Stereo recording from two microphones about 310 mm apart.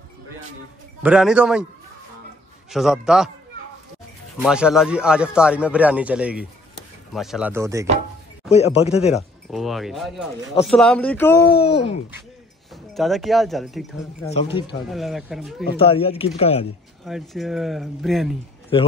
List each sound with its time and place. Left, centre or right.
1.0 s speech: centre
2.7 s speech: centre
4.4 s speech: centre
8.5 s speech: centre
9.1 s speech: centre
11.4 s speech: left
12.9 s speech: centre
14.2 s speech: centre
14.9 s speech: centre
15.8 s speech: centre
17.0 s speech: centre
18.7 s speech: centre